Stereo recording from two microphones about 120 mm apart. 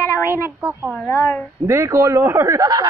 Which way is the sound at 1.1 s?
25° left (ahead or behind).